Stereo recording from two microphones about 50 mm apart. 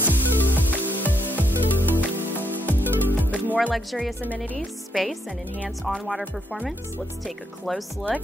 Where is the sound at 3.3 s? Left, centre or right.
Right.